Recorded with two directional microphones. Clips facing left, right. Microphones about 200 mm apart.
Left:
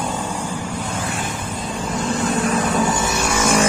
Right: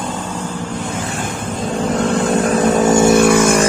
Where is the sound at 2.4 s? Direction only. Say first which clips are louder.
Right 7 dB; 40° right (ahead or behind); by 3.5 s 55° right (ahead or behind).